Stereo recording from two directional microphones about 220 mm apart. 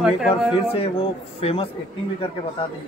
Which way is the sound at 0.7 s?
25° left (ahead or behind).